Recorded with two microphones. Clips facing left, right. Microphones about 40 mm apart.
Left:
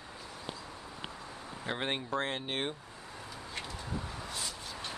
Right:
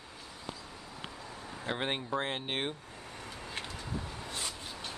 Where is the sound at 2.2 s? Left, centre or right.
Centre.